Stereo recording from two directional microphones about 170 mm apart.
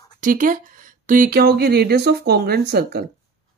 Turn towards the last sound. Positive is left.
turn(degrees=-65)  # may be behind; listen again after turning